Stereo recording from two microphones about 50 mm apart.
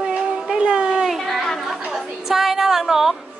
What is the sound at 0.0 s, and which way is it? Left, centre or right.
Music, centre.